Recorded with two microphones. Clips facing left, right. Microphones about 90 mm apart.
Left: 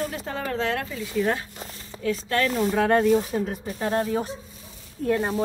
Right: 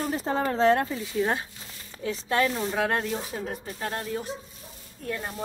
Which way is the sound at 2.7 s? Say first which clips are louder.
Left 8 dB; 5° right (ahead or behind).